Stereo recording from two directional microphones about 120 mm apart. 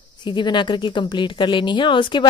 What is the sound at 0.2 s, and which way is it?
A woman's voice, 40° left (ahead or behind).